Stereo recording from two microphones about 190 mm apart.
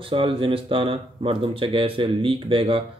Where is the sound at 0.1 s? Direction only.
30° right (ahead or behind).